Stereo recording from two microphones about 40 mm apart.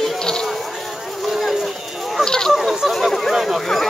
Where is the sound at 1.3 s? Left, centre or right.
Centre.